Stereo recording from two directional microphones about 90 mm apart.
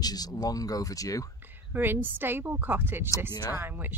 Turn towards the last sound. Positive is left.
turn(degrees=-20)  # may be behind; listen again after turning